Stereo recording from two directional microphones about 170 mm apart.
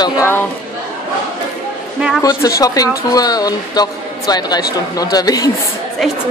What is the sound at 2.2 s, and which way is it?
Speech, 20° left (ahead or behind).